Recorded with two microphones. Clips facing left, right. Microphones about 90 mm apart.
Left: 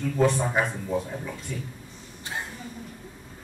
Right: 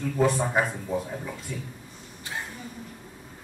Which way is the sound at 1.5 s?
10° right (ahead or behind).